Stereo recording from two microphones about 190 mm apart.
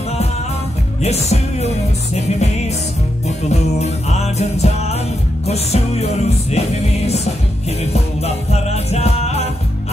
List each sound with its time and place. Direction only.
1.0 s music: 35° left (ahead or behind)
7.8 s music: 35° left (ahead or behind)